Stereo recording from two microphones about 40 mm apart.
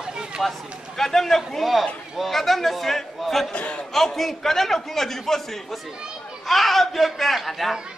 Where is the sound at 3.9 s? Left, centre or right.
Centre.